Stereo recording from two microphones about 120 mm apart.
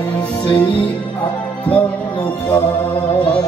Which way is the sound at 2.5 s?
35° left (ahead or behind).